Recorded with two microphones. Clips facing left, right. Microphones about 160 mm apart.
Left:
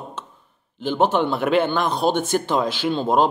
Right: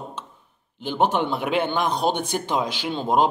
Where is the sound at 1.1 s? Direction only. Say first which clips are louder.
Left 4 dB; 10° right (ahead or behind).